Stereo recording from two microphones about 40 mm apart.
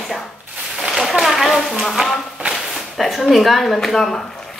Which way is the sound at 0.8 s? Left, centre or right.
Centre.